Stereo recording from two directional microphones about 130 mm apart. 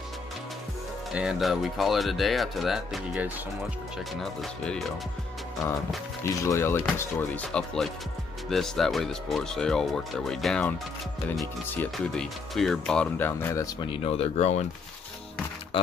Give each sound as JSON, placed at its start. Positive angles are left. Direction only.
{"t": 1.1, "sound": "speech", "side_deg": -5}
{"t": 4.2, "sound": "speech", "side_deg": 0}
{"t": 6.2, "sound": "speech", "side_deg": 20}
{"t": 11.7, "sound": "speech", "side_deg": 10}
{"t": 13.7, "sound": "speech", "side_deg": 40}
{"t": 15.7, "sound": "speech", "side_deg": 40}